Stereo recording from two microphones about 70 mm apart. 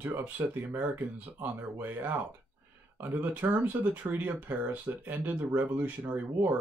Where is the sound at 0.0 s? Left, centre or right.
Right.